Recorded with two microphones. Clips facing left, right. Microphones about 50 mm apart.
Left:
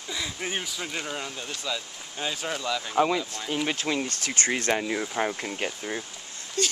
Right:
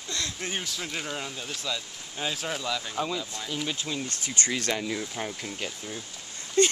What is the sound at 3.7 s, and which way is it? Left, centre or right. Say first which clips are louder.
Speech: left 5 dB; left.